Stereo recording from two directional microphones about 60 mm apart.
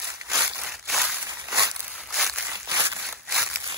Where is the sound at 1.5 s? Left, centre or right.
Right.